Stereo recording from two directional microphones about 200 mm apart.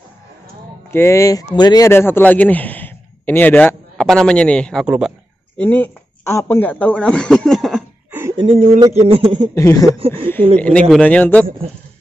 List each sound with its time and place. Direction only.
0.9 s speech: 15° left (ahead or behind)
4.8 s speech: 5° right (ahead or behind)
5.6 s a man's voice: 10° left (ahead or behind)
8.2 s a sound: 15° right (ahead or behind)
8.5 s a man's voice: 30° right (ahead or behind)
9.6 s speech: 15° left (ahead or behind)
9.9 s a man's voice: 25° right (ahead or behind)
10.6 s speech: 5° left (ahead or behind)